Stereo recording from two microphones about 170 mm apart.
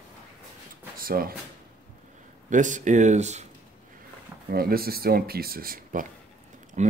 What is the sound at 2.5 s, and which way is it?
Speech, 45° right (ahead or behind).